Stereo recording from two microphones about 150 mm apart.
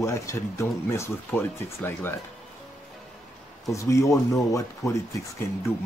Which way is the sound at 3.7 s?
20° left (ahead or behind).